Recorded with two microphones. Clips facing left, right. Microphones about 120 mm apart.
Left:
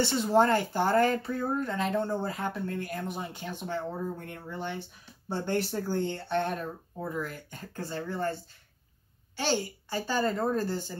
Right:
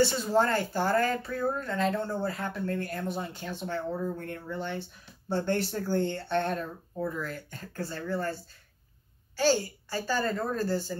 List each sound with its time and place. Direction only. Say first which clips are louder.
0.0 s a woman's voice: left 1 dB; 20° left (ahead or behind)